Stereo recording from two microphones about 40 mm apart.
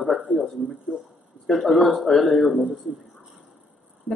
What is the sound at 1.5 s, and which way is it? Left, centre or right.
A man's voice, centre.